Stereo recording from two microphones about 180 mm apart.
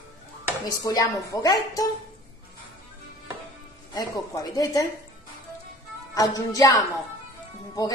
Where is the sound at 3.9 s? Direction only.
20° left (ahead or behind).